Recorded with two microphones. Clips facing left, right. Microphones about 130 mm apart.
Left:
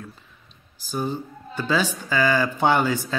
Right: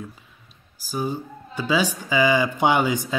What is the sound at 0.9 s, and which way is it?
Speech, 10° right (ahead or behind).